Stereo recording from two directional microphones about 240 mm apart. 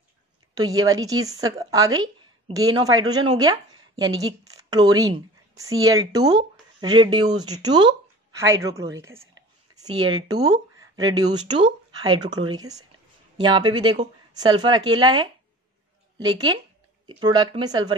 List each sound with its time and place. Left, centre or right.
0.6 s a woman's voice: centre
16.3 s speech: centre